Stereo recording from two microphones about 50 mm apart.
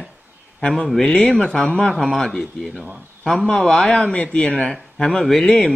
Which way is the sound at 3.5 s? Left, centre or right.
Centre.